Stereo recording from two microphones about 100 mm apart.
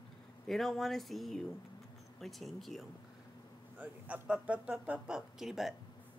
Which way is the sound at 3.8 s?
15° right (ahead or behind).